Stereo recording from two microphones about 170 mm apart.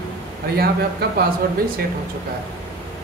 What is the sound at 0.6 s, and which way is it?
Speech, 65° right (ahead or behind).